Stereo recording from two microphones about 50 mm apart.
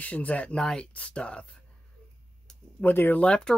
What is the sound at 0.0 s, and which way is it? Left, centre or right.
Speech, left.